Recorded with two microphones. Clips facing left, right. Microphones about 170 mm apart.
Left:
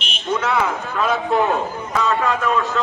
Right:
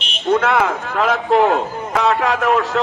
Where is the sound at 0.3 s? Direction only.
65° right (ahead or behind).